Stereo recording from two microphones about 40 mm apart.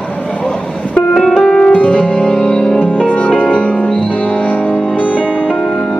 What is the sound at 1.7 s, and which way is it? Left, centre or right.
Music, left.